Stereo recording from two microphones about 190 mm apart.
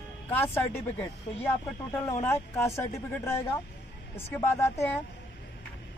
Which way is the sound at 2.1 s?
15° left (ahead or behind).